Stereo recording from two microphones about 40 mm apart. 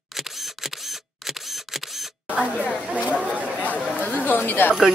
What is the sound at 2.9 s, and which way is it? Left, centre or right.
Chatter, right.